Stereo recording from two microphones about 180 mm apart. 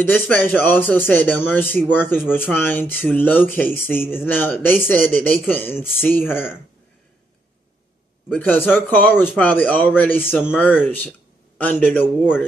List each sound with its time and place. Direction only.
0.0 s speech: 10° left (ahead or behind)
8.3 s speech: 10° left (ahead or behind)
9.1 s speech: 5° right (ahead or behind)
9.4 s speech: 10° left (ahead or behind)
10.2 s speech: 5° right (ahead or behind)
10.6 s a man's voice: 10° left (ahead or behind)